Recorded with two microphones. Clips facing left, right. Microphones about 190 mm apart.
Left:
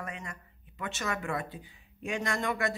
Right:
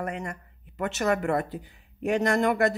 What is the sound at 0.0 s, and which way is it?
Speech, 65° right (ahead or behind).